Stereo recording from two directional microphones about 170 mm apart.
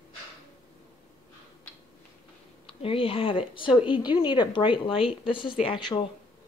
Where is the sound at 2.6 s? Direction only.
35° left (ahead or behind).